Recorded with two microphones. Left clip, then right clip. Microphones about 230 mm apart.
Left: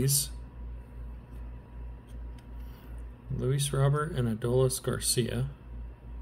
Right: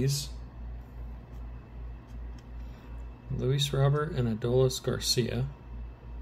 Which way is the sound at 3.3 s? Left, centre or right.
Centre.